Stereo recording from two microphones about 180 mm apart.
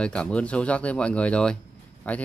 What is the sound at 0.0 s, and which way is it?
Speech, 5° left (ahead or behind).